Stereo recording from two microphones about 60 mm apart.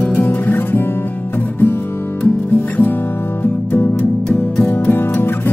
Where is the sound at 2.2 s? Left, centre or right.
Left.